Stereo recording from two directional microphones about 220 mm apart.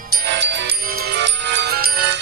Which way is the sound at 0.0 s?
50° right (ahead or behind).